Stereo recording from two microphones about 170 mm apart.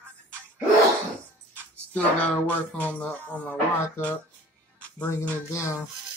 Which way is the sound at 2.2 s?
10° left (ahead or behind).